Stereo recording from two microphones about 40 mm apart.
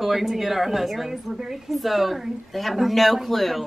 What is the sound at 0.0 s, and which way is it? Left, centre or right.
Speech, centre.